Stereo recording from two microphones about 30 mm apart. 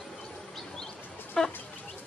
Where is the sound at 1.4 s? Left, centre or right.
Centre.